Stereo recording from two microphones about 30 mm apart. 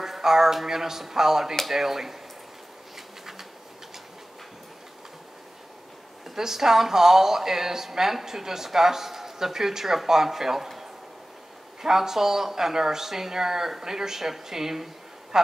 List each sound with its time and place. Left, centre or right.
0.0 s speech: centre
6.3 s speech: centre
11.8 s speech: centre